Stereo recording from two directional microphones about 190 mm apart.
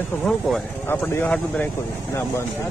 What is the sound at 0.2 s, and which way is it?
Speech, 10° left (ahead or behind).